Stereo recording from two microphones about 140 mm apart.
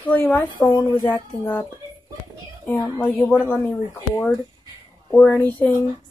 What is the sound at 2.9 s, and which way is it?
Speech, 10° left (ahead or behind).